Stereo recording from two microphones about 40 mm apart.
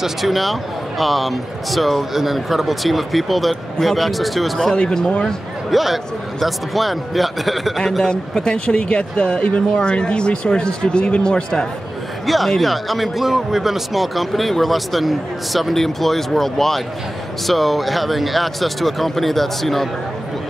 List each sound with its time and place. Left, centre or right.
0.0 s speech: centre
4.7 s speech: left
5.7 s speech: centre
8.1 s speech: left
12.3 s speech: centre